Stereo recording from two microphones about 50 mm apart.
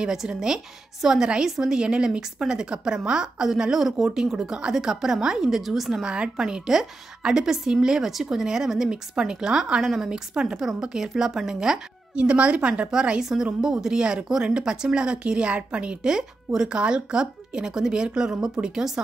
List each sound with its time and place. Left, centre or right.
0.0 s speech: centre
6.0 s speech: centre
12.2 s a woman's voice: right